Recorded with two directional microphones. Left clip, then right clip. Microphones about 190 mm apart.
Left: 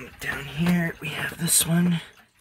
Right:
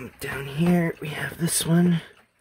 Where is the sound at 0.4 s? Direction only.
25° right (ahead or behind).